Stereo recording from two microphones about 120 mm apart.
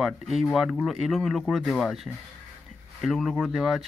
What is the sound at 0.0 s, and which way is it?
Speech, centre (ahead or behind).